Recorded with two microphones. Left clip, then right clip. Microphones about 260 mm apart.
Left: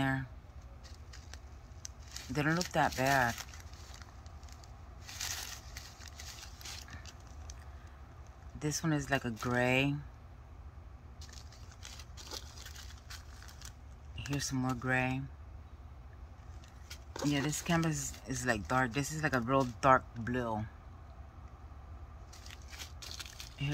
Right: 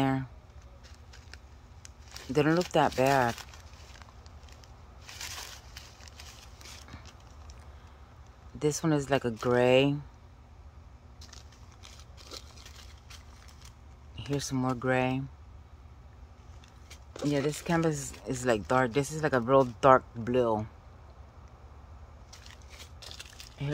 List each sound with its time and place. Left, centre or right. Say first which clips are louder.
0.0 s a sound: right 5 dB; right
2.3 s speech: right 7 dB; right
5.8 s a sound: right 1 dB; centre
8.5 s speech: right 7 dB; right
14.3 s speech: right 5 dB; right
17.3 s speech: right 5 dB; right